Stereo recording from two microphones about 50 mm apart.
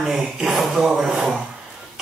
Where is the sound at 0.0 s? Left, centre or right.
Centre.